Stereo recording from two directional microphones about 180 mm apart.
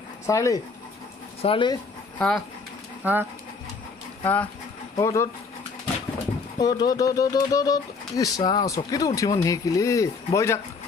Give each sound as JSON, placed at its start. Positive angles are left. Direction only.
{"t": 0.3, "sound": "speech", "side_deg": 15}
{"t": 1.4, "sound": "speech", "side_deg": 30}
{"t": 2.1, "sound": "speech", "side_deg": 5}
{"t": 3.0, "sound": "speech", "side_deg": -10}
{"t": 4.2, "sound": "speech", "side_deg": 10}
{"t": 6.6, "sound": "speech", "side_deg": 20}